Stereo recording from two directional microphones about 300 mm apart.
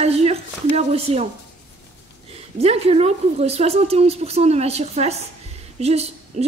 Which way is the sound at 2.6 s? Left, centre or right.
Centre.